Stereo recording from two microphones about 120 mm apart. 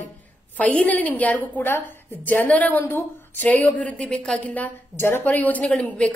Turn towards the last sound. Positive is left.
turn(degrees=10)  # may be behind; listen again after turning